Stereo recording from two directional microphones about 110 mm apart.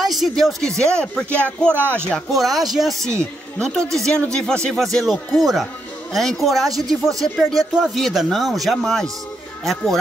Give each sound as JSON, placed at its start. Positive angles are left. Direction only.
{"t": 0.0, "sound": "speech", "side_deg": 0}
{"t": 1.7, "sound": "speech", "side_deg": -20}
{"t": 2.0, "sound": "speech", "side_deg": 5}